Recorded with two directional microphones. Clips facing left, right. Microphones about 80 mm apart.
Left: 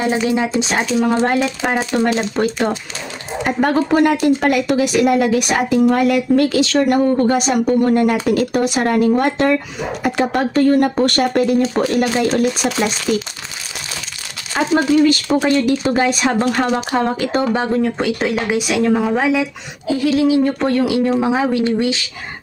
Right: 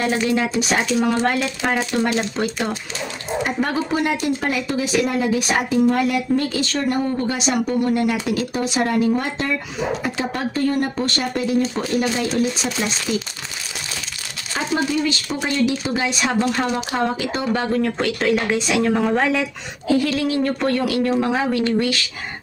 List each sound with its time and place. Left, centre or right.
0.0 s speech: centre
1.1 s speech: left
3.4 s speech: left
7.2 s speech: left
12.3 s speech: left
14.5 s speech: left
17.5 s speech: centre
20.1 s speech: centre